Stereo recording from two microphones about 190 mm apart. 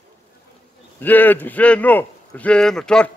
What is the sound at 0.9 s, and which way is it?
Speech, 10° left (ahead or behind).